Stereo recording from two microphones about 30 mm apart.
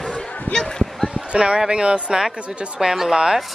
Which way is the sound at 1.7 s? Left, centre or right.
Right.